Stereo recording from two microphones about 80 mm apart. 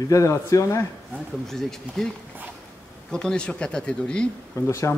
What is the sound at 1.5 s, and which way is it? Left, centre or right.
Speech, centre.